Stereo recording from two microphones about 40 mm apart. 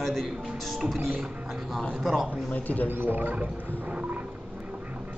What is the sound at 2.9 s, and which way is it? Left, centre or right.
Speech, right.